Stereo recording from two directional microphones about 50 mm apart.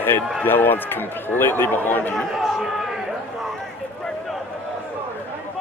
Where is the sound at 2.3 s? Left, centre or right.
Centre.